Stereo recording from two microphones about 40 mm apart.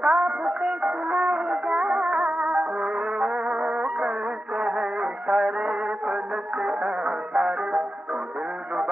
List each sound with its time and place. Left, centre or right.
0.0 s music: right